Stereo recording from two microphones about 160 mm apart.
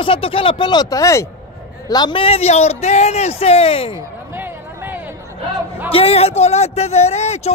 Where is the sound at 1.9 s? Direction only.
30° left (ahead or behind).